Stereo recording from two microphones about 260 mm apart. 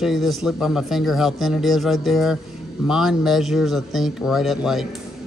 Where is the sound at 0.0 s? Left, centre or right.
Centre.